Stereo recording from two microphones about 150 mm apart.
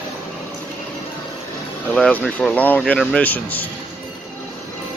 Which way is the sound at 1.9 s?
10° left (ahead or behind).